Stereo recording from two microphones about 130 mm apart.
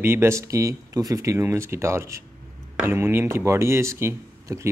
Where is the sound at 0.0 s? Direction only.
20° right (ahead or behind).